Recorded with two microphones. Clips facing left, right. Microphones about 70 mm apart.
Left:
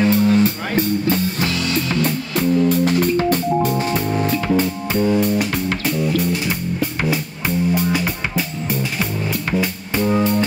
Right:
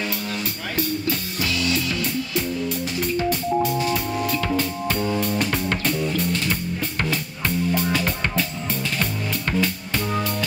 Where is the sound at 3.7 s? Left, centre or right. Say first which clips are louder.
Left 3 dB; left.